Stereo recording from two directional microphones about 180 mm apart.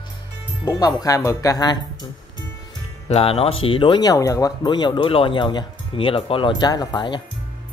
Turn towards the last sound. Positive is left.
turn(degrees=25)  # may be behind; listen again after turning